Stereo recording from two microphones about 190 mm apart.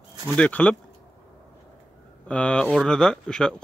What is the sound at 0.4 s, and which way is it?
Speech, 5° left (ahead or behind).